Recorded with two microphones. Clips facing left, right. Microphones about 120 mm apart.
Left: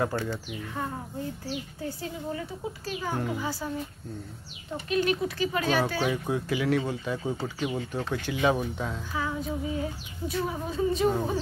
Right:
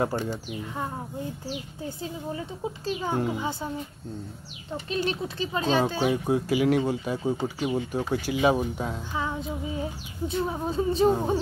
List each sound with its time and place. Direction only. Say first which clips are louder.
0.0 s speech: right 2 dB; 20° right (ahead or behind)
4.9 s speech: left 3 dB; 30° right (ahead or behind)